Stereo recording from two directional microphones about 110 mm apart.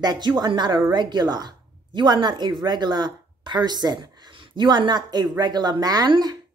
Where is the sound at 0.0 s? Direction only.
40° right (ahead or behind).